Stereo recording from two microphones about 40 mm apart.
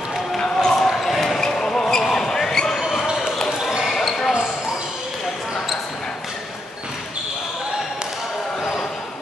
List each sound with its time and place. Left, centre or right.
0.4 s basketball bounce: centre
1.1 s basketball bounce: centre
3.5 s basketball bounce: centre
3.8 s basketball bounce: centre